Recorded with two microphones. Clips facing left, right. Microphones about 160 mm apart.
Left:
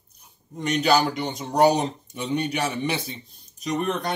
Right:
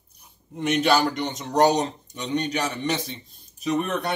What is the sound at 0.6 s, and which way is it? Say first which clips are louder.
Speech: even; centre (ahead or behind).